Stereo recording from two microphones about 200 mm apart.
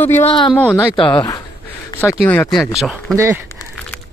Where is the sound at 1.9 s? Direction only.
15° left (ahead or behind).